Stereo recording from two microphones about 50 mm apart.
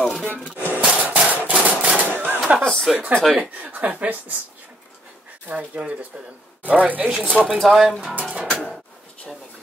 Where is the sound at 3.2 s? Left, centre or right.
Centre.